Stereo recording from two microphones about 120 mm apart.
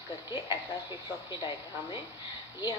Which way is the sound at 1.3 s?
40° left (ahead or behind).